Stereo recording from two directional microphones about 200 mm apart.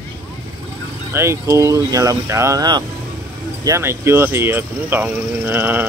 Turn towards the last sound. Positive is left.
turn(degrees=-10)  # may be behind; listen again after turning